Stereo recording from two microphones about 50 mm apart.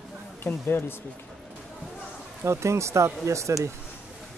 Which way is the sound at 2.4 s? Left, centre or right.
Right.